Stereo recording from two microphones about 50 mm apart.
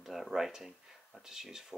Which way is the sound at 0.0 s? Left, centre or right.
Centre.